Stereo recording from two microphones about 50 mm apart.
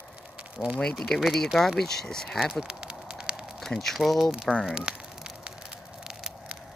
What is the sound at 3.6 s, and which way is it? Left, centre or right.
Speech, centre.